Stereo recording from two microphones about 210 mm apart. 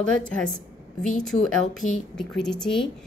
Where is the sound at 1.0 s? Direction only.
35° left (ahead or behind).